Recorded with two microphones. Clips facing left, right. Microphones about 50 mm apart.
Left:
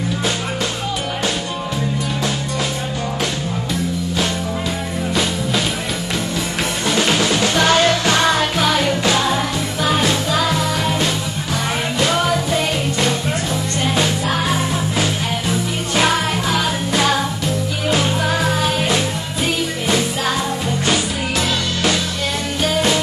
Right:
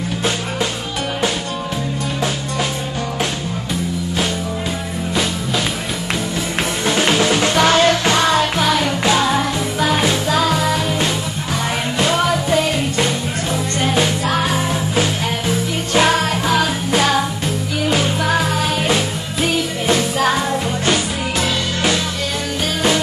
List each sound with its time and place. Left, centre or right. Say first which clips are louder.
6.9 s music: right 1 dB; centre
7.3 s music: even; right
13.9 s music: right 1 dB; centre
15.9 s music: right 2 dB; centre